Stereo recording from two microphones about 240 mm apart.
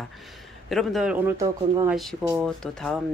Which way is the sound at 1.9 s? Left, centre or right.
Centre.